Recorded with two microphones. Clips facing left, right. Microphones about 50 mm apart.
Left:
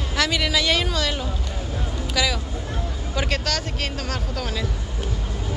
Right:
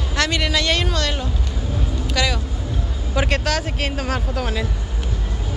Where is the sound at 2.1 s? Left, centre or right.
Centre.